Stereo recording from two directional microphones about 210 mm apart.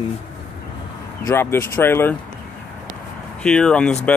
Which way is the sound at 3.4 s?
5° left (ahead or behind).